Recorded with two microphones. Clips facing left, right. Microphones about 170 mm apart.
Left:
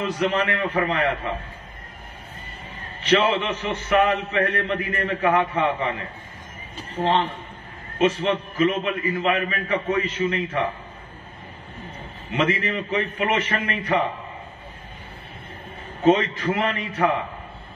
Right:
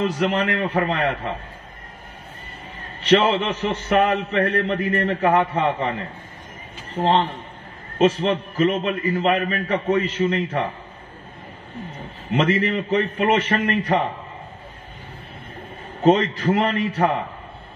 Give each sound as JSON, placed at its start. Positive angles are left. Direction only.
{"t": 0.0, "sound": "a man's voice", "side_deg": -35}
{"t": 3.1, "sound": "a man's voice", "side_deg": -35}
{"t": 12.4, "sound": "a man's voice", "side_deg": -35}
{"t": 16.0, "sound": "a man's voice", "side_deg": -35}